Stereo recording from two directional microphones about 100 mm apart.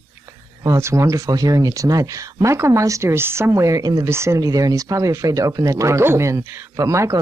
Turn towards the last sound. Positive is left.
turn(degrees=-30)  # may be behind; listen again after turning